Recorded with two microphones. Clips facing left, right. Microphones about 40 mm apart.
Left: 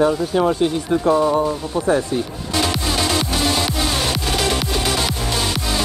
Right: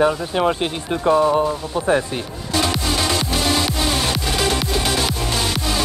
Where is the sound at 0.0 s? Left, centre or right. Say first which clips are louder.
Left 1 dB; right.